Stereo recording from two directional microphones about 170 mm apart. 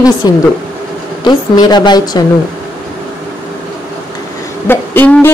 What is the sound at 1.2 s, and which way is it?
A woman's voice, 25° left (ahead or behind).